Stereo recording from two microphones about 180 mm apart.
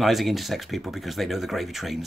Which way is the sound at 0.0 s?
Centre (ahead or behind).